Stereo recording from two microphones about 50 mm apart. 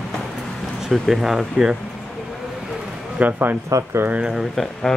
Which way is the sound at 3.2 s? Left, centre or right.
Right.